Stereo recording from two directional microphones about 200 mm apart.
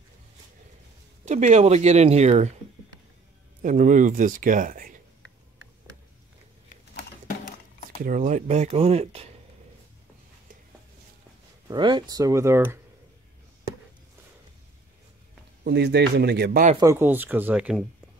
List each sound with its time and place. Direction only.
1.2 s speech: 35° right (ahead or behind)
3.6 s speech: 40° right (ahead or behind)
7.0 s a sound: 40° left (ahead or behind)
8.0 s speech: 40° right (ahead or behind)
11.6 s speech: 20° right (ahead or behind)
15.6 s speech: 55° right (ahead or behind)
16.8 s speech: 10° right (ahead or behind)